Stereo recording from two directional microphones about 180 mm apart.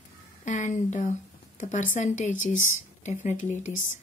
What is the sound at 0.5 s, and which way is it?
Speech, 40° left (ahead or behind).